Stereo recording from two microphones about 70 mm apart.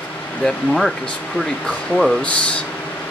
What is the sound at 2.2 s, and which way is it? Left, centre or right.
Speech, centre.